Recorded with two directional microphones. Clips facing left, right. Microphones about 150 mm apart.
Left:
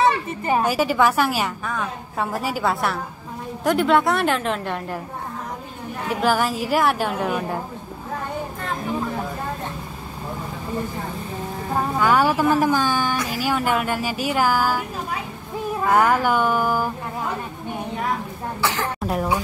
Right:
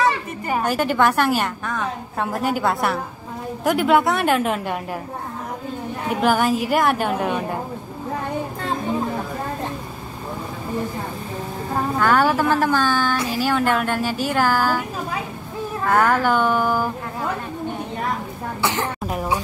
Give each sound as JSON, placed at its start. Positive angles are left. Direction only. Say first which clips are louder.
{"t": 0.7, "sound": "a woman's voice", "louder": "right 3 dB", "side_deg": 5}
{"t": 6.2, "sound": "a woman's voice", "louder": "right 2 dB", "side_deg": 0}
{"t": 11.7, "sound": "speech", "louder": "even", "side_deg": 10}
{"t": 15.8, "sound": "speech", "louder": "even", "side_deg": 10}
{"t": 18.6, "sound": "a sound", "louder": "right 1 dB", "side_deg": -20}